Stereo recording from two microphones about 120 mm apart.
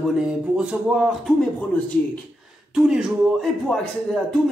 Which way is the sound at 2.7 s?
5° right (ahead or behind).